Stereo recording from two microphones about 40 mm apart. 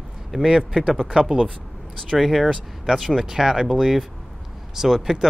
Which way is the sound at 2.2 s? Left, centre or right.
Centre.